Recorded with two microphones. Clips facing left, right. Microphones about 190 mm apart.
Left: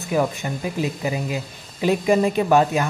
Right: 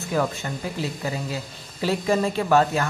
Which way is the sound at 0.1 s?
15° left (ahead or behind).